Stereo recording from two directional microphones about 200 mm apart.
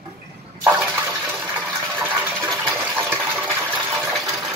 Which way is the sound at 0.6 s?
10° right (ahead or behind).